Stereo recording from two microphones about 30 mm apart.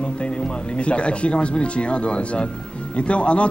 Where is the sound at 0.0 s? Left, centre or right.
Left.